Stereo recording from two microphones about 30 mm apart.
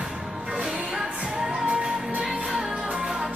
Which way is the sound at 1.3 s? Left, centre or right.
Right.